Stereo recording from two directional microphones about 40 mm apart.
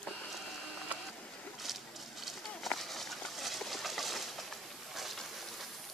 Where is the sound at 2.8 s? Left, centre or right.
Centre.